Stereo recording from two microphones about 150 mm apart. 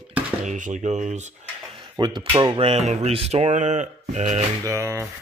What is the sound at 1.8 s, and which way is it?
Speech, 30° right (ahead or behind).